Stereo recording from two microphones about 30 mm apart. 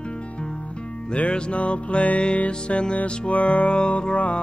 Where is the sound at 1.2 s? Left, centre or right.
Left.